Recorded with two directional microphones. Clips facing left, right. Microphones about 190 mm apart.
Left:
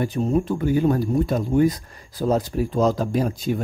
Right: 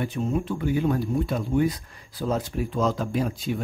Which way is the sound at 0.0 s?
40° left (ahead or behind).